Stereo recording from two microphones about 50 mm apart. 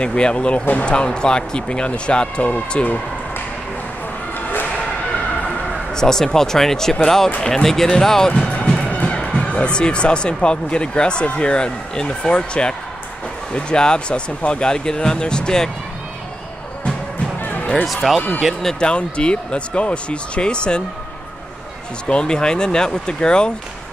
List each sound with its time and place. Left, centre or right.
0.0 s speech: left
5.9 s speech: centre
8.3 s speech: left
17.4 s basketball bounce: left
17.8 s speech: centre
18.6 s speech: centre
22.0 s speech: centre